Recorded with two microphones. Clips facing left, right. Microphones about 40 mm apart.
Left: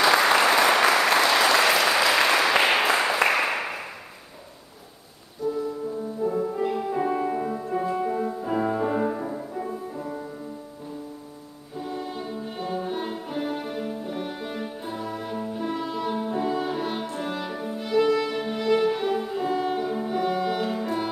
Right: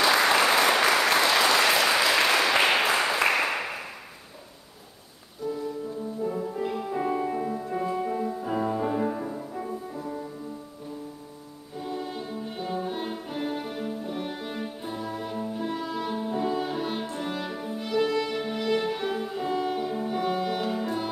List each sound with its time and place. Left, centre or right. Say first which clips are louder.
0.0 s applause: left 2 dB; centre
6.2 s music: left 5 dB; centre
11.8 s music: left 1 dB; centre